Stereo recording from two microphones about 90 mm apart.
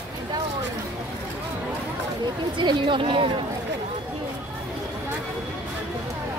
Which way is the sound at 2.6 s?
65° right (ahead or behind).